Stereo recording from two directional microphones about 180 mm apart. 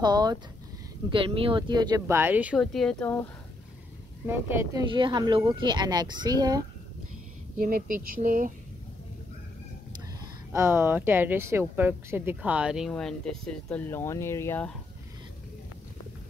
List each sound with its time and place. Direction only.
0.0 s speech: 20° right (ahead or behind)
2.6 s speech: centre (ahead or behind)
4.3 s speech: 15° right (ahead or behind)
4.9 s speech: 25° right (ahead or behind)
7.6 s speech: 50° right (ahead or behind)
10.5 s speech: 15° right (ahead or behind); by 14.7 s 15° left (ahead or behind)